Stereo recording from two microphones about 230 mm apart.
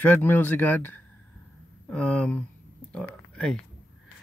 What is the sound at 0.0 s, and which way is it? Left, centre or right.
Speech, centre.